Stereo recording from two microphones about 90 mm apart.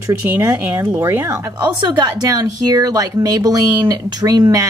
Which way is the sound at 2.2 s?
45° right (ahead or behind).